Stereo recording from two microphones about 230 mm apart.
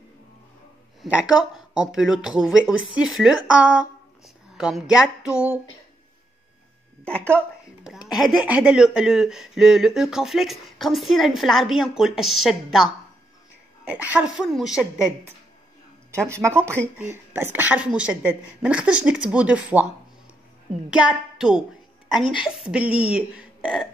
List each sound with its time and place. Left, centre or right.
1.0 s speech: centre
7.3 s speech: centre
16.3 s speech: centre
20.9 s speech: centre
22.2 s a woman's voice: left
22.6 s speech: centre